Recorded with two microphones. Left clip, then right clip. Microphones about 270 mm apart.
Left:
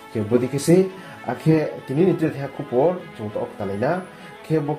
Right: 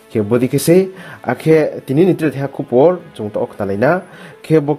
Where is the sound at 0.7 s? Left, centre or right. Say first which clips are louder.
Right 5 dB; right.